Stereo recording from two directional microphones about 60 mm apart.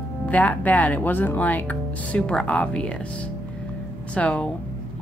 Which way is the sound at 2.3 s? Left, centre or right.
Centre.